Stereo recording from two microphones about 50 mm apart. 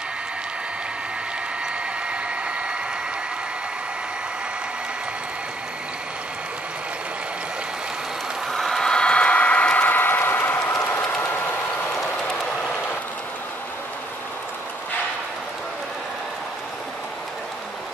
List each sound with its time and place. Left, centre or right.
2.0 s hair dryer: right
8.5 s a sound: centre; by 10.8 s left
10.9 s train: left
12.2 s train: centre